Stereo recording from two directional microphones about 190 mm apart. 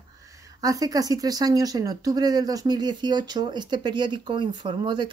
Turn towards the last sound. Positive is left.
turn(degrees=-25)  # may be behind; listen again after turning